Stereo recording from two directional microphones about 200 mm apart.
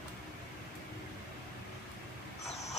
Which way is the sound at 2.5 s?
35° left (ahead or behind).